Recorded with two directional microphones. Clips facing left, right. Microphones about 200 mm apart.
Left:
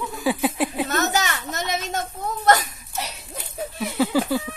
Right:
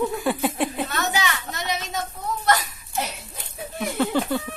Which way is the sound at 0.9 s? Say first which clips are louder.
Left 3 dB; 45° left (ahead or behind).